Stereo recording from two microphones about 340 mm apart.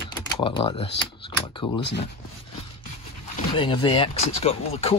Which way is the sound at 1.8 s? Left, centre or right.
Left.